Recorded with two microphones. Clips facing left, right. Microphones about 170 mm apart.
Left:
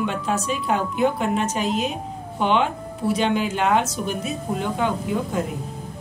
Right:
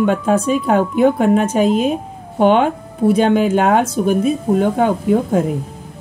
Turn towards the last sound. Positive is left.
turn(degrees=-50)  # may be behind; listen again after turning